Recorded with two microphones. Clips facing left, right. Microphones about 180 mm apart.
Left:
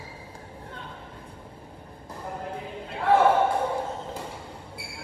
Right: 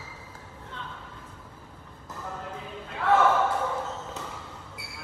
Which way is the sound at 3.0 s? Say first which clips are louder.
Left 2 dB; 30° left (ahead or behind).